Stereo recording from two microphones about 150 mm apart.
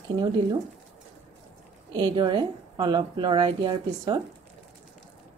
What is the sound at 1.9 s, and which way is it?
Speech, 30° right (ahead or behind).